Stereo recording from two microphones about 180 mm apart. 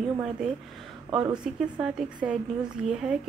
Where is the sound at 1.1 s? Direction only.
25° right (ahead or behind).